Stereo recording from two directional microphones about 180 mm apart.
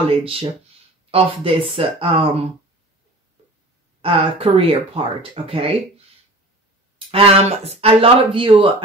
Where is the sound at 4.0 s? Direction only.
30° right (ahead or behind).